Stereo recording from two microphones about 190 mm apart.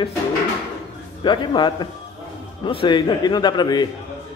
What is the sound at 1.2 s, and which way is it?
Speech, 25° left (ahead or behind).